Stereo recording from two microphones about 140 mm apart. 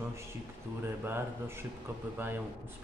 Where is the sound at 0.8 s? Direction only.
15° right (ahead or behind).